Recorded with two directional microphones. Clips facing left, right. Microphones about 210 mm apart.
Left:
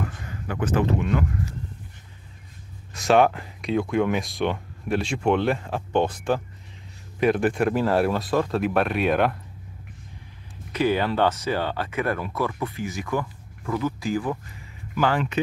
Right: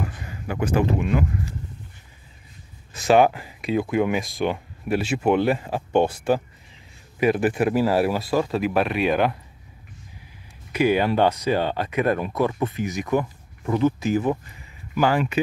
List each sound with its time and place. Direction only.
0.0 s a man's voice: 10° right (ahead or behind)
2.9 s speech: 5° right (ahead or behind)
10.7 s speech: 15° right (ahead or behind)
15.0 s speech: 10° right (ahead or behind)